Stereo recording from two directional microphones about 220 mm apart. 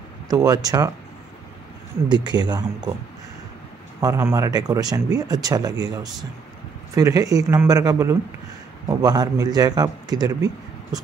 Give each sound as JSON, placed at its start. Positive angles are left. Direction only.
{"t": 0.3, "sound": "speech", "side_deg": -15}
{"t": 2.0, "sound": "speech", "side_deg": -20}
{"t": 4.0, "sound": "speech", "side_deg": -15}
{"t": 7.0, "sound": "speech", "side_deg": -15}